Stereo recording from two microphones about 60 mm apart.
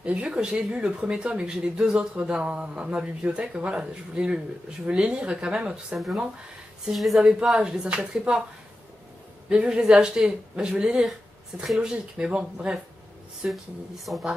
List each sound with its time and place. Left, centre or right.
0.0 s speech: centre
6.9 s speech: centre
7.2 s speech: centre
9.5 s speech: centre
13.5 s speech: centre